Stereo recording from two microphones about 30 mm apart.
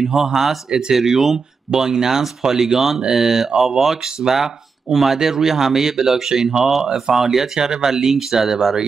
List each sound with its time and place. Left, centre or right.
0.0 s speech: centre
0.7 s speech: right
0.9 s speech: centre
1.7 s speech: right